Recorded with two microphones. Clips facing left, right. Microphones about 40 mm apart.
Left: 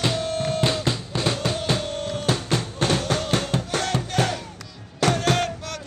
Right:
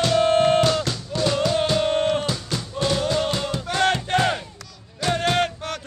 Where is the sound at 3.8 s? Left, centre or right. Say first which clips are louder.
Right 4 dB; right.